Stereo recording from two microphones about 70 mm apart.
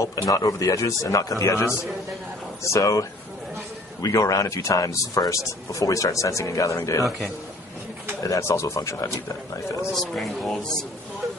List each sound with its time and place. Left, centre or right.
0.5 s speech: left
8.2 s speech: left
9.8 s speech: centre